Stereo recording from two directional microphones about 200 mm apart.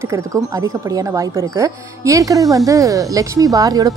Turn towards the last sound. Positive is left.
turn(degrees=-15)  # may be behind; listen again after turning